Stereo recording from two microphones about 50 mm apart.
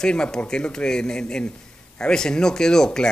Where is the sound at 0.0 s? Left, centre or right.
Centre.